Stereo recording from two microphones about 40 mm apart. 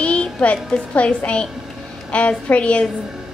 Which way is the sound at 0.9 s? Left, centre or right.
Left.